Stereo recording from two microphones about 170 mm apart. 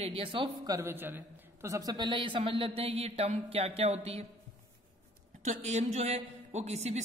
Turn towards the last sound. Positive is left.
turn(degrees=-40)  # may be behind; listen again after turning